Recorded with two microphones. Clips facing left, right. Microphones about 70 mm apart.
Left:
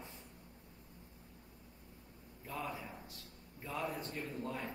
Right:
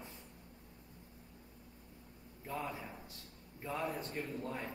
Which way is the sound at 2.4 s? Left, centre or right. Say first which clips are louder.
Right 1 dB; right.